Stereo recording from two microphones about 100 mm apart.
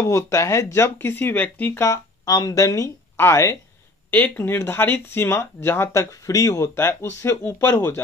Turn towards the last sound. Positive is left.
turn(degrees=20)  # may be behind; listen again after turning